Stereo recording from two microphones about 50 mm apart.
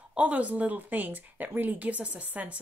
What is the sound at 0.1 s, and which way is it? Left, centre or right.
A woman's voice, right.